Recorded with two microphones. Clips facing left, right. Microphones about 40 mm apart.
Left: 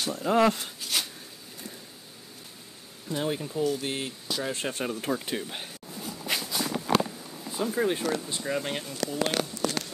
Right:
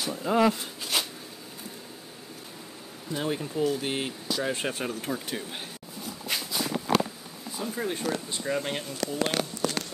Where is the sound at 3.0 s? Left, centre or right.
Centre.